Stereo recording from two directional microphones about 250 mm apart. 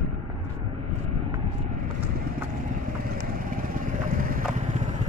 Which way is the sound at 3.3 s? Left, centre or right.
Right.